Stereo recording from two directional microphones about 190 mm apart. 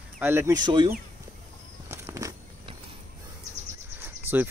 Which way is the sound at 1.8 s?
15° right (ahead or behind).